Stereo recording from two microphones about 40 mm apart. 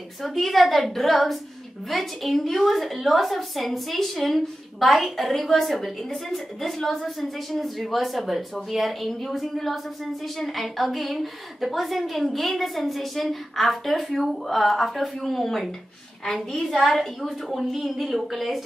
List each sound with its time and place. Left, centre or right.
0.2 s a woman's voice: centre